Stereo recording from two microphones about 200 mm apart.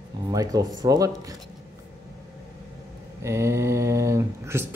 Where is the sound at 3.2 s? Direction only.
15° right (ahead or behind).